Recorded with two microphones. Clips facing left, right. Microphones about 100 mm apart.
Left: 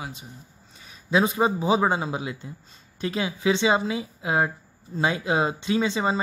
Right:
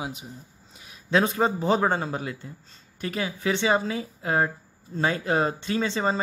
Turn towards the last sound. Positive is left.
turn(degrees=15)  # may be behind; listen again after turning